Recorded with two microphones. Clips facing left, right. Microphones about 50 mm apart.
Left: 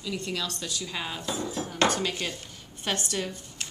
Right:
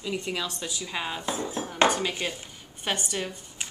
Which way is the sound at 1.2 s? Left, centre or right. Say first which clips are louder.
Right 1 dB; right.